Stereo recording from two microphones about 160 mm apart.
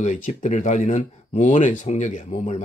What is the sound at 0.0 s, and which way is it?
Speech, 50° left (ahead or behind).